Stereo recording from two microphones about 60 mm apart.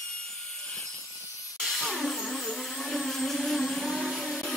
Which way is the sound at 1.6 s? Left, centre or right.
Centre.